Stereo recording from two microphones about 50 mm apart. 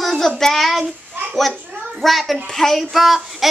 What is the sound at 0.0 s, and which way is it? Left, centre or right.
Child singing, centre.